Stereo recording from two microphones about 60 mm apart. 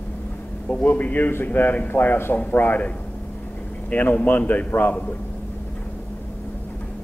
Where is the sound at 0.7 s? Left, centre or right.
Left.